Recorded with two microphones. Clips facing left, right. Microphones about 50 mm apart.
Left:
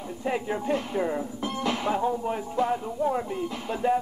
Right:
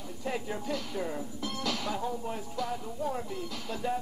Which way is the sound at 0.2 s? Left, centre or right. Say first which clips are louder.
Left 6 dB; left.